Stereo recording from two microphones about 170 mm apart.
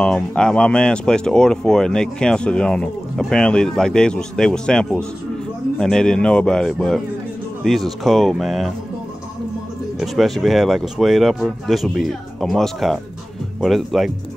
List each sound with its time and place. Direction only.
0.0 s speech: 5° left (ahead or behind)
9.9 s speech: centre (ahead or behind)